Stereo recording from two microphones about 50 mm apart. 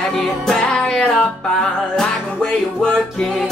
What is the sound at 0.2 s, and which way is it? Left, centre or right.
Music, centre.